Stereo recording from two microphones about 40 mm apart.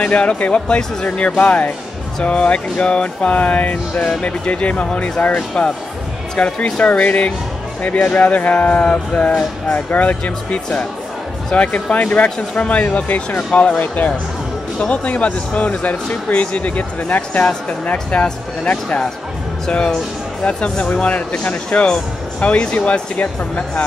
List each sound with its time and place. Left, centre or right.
0.0 s speech: left
20.4 s speech: left
21.8 s speech: left
23.1 s speech: left